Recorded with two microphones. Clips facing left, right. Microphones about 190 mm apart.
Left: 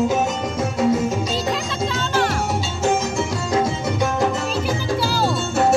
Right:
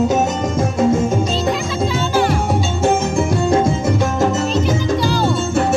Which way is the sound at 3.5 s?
50° right (ahead or behind).